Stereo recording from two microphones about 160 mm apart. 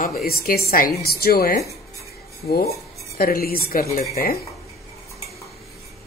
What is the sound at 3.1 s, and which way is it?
Speech, 70° left (ahead or behind).